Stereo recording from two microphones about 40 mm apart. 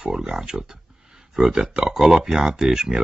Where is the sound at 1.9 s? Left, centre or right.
Centre.